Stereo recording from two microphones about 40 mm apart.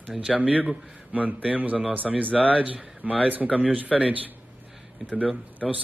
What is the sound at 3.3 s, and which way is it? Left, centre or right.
Speech, right.